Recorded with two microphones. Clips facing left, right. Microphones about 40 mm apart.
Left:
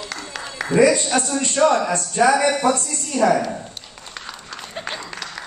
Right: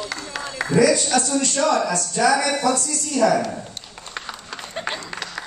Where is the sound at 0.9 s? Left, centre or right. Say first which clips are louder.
Even; left.